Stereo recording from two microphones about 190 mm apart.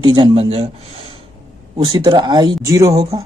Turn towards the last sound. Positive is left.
turn(degrees=-15)  # may be behind; listen again after turning